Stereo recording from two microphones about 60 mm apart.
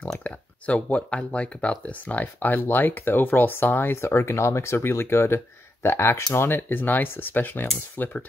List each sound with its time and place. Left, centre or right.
0.2 s speech: left
4.0 s speech: left